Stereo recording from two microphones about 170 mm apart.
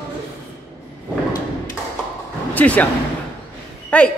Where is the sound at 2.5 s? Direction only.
10° left (ahead or behind).